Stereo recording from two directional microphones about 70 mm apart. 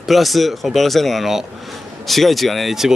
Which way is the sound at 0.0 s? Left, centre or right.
Centre.